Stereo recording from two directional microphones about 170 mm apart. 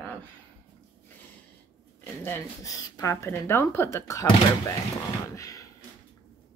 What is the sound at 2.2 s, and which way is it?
Speech, 15° left (ahead or behind).